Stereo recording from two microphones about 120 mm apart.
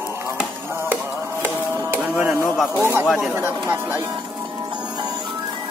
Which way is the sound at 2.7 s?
20° right (ahead or behind).